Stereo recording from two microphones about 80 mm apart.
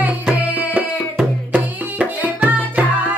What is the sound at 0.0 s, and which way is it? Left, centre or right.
Music, right.